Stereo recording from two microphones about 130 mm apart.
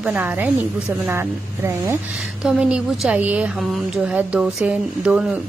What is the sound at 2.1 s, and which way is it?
A woman's voice, 5° right (ahead or behind).